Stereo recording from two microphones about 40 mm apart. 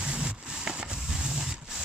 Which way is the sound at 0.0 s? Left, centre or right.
Right.